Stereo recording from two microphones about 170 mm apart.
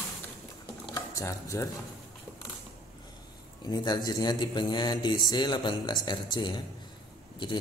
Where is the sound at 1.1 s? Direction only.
15° left (ahead or behind).